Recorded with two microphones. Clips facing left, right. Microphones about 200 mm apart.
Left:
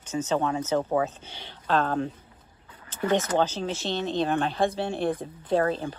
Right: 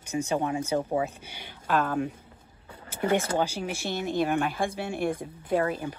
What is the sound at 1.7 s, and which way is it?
Speech, 25° left (ahead or behind).